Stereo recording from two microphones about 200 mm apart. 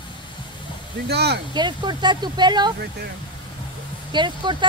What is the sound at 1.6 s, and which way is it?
Speech, 20° right (ahead or behind).